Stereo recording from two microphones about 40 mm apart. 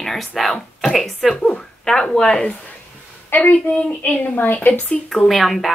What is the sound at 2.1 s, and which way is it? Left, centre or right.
Speech, centre.